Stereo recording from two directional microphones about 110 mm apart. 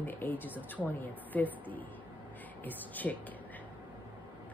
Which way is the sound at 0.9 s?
15° left (ahead or behind).